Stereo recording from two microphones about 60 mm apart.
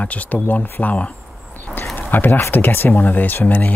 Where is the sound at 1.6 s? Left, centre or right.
Left.